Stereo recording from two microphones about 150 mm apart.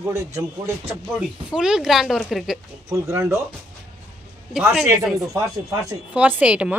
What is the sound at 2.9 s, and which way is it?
Speech, 20° right (ahead or behind).